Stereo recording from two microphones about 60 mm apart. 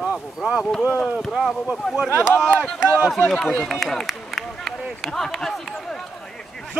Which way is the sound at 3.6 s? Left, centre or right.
Centre.